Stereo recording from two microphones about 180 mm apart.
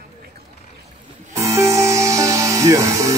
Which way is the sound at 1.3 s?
15° right (ahead or behind).